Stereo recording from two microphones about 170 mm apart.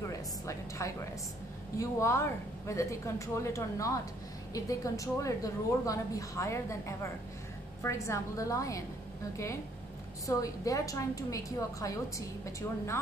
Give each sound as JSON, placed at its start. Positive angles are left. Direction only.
{"t": 0.0, "sound": "a woman's voice", "side_deg": 20}
{"t": 10.2, "sound": "a woman's voice", "side_deg": 20}